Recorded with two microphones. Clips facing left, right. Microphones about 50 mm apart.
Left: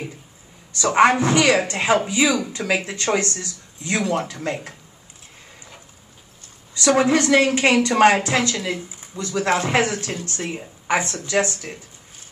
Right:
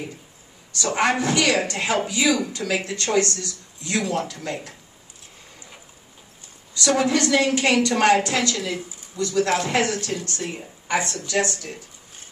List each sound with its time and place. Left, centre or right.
0.7 s a woman's voice: left
6.7 s a woman's voice: left